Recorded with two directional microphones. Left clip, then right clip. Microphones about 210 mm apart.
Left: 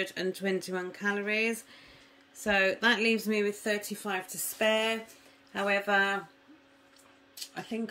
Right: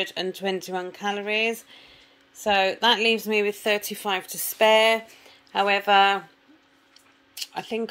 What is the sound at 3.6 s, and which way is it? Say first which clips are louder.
Speech: right 8 dB; 50° right (ahead or behind).